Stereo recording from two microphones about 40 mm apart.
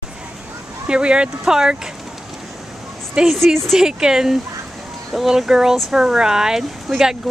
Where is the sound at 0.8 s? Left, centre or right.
Right.